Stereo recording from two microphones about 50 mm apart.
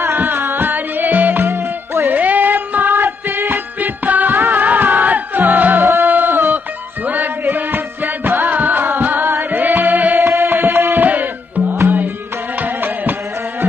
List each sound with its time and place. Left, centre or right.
0.0 s music: right
11.7 s music: right
12.5 s music: right